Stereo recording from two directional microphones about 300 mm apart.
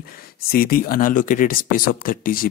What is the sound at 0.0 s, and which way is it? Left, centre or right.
Speech, left.